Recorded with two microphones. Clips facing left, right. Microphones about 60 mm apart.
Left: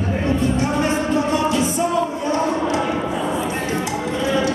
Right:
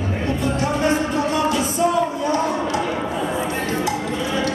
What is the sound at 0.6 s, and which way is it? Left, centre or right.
Music, left.